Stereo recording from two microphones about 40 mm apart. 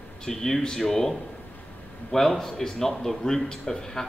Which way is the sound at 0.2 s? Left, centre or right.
Centre.